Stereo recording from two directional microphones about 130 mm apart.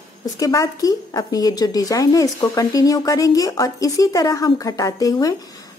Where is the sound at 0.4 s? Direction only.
25° left (ahead or behind).